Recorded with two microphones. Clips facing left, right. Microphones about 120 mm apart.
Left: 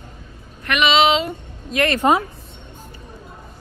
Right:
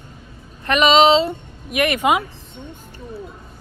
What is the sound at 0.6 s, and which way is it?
Female singing, 40° right (ahead or behind).